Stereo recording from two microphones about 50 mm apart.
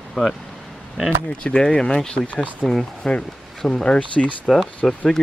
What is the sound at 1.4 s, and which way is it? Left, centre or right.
Speech, centre.